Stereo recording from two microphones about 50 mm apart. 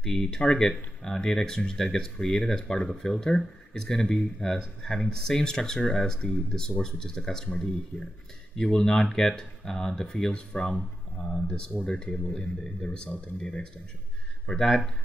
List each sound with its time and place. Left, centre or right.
0.0 s speech: centre
7.9 s speech: left
8.5 s speech: centre